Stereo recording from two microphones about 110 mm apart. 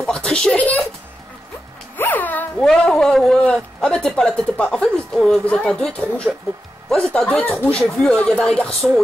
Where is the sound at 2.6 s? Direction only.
5° left (ahead or behind).